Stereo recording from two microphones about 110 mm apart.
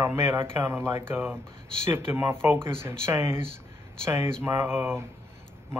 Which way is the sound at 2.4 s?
20° right (ahead or behind).